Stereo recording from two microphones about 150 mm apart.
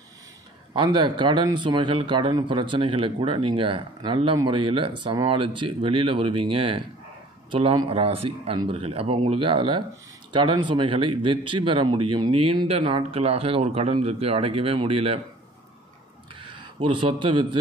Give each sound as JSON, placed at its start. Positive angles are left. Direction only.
{"t": 0.7, "sound": "speech", "side_deg": -30}
{"t": 16.3, "sound": "speech", "side_deg": -35}